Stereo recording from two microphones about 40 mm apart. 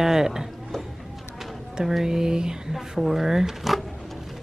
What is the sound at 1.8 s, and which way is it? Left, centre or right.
Speech, centre.